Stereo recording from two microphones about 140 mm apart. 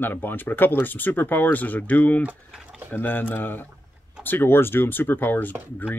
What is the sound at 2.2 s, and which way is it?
Speech, 5° right (ahead or behind).